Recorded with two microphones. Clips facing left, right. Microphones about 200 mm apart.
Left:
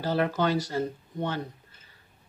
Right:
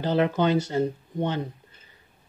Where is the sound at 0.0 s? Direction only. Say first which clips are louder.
Right 3 dB; 20° right (ahead or behind).